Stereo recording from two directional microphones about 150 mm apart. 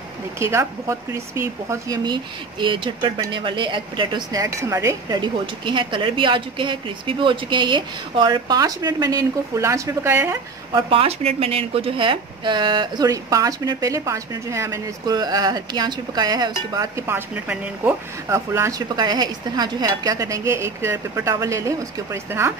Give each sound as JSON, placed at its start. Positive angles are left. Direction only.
{"t": 0.4, "sound": "speech", "side_deg": -20}
{"t": 10.7, "sound": "speech", "side_deg": -35}